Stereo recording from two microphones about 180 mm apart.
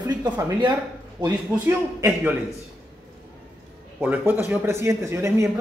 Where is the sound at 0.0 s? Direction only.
15° right (ahead or behind).